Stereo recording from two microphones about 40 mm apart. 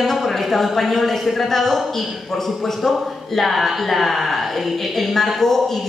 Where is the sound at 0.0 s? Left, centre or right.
Centre.